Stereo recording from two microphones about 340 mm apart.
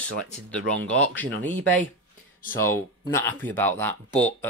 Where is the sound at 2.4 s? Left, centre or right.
Centre.